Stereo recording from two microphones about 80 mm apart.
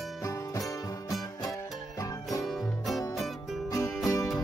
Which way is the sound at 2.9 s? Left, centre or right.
Centre.